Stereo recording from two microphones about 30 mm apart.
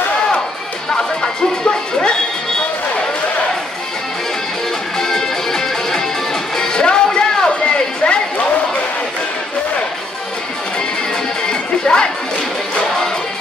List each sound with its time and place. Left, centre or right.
0.9 s music: left
4.9 s music: centre
7.2 s a sound: left
11.4 s music: left